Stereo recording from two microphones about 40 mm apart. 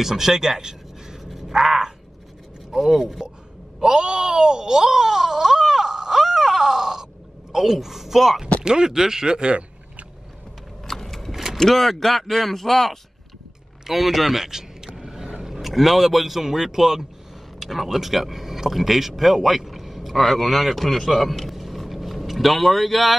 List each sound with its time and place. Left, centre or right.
0.0 s speech: centre
1.2 s a sound: centre
2.7 s speech: centre
3.8 s wail: centre
7.5 s speech: centre
8.6 s speech: centre
10.9 s a sound: centre
11.5 s speech: centre
15.0 s vehicle: centre
15.7 s speech: centre